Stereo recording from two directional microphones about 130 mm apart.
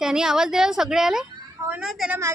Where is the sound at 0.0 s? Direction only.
5° right (ahead or behind).